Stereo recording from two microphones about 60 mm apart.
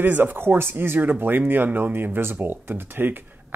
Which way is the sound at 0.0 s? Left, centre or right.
Right.